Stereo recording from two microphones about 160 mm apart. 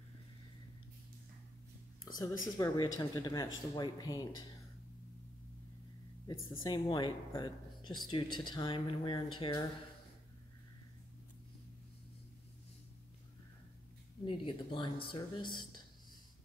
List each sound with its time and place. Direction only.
2.1 s speech: 20° left (ahead or behind)
6.2 s speech: 30° left (ahead or behind)
14.2 s speech: 30° left (ahead or behind)